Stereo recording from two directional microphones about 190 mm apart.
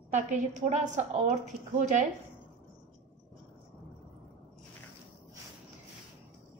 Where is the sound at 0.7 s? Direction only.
40° right (ahead or behind).